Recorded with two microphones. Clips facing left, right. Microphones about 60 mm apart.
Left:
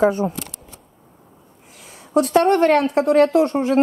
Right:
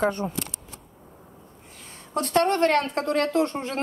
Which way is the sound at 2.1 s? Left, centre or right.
Centre.